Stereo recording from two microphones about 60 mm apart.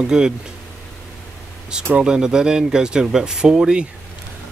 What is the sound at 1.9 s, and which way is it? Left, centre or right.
Speech, centre.